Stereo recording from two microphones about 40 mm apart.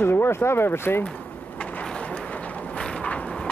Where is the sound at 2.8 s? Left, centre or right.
Left.